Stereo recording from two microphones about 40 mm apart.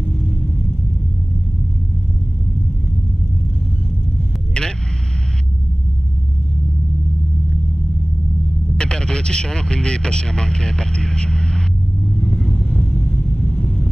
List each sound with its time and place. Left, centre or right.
4.6 s vehicle: left
8.7 s speech: centre
12.4 s vehicle: centre
12.6 s vehicle: left